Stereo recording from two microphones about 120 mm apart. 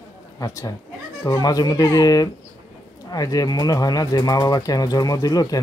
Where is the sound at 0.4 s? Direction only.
25° left (ahead or behind).